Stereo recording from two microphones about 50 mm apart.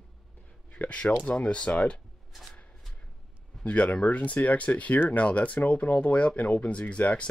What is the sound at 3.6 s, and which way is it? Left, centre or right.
Speech, left.